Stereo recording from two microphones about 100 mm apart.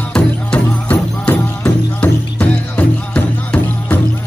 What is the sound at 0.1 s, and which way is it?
Music, 10° left (ahead or behind).